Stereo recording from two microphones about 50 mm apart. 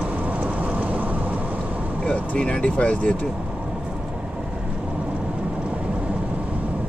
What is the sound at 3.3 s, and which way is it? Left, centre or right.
Vehicle, right.